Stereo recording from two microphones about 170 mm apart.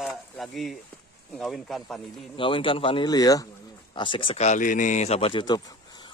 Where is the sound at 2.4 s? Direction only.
30° left (ahead or behind).